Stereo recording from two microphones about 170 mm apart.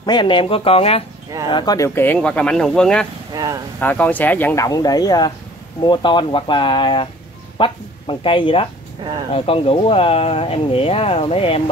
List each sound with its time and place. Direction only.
0.0 s speech: 25° left (ahead or behind)
2.0 s speech: 10° left (ahead or behind)
3.3 s speech: 20° right (ahead or behind)
3.8 s speech: 10° left (ahead or behind)
4.6 s speech: 20° left (ahead or behind)